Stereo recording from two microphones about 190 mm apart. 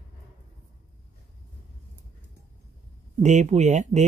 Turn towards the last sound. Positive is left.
turn(degrees=-40)  # may be behind; listen again after turning